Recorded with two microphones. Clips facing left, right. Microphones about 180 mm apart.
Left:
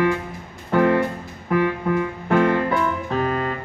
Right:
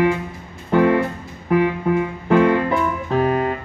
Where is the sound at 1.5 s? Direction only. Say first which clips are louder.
Right 3 dB; 20° right (ahead or behind).